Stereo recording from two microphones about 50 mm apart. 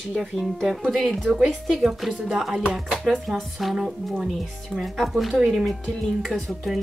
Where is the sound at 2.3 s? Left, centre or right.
Centre.